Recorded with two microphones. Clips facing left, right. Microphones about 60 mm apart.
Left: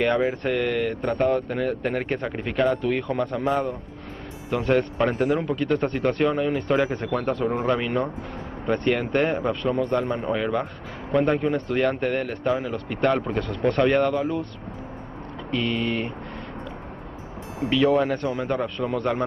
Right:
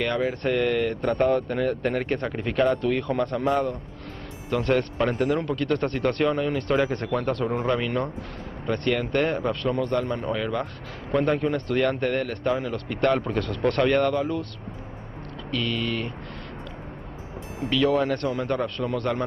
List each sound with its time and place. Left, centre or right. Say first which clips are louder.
0.0 s speech: left 3 dB; centre
15.5 s speech: left 2 dB; centre
17.8 s speech: left 1 dB; centre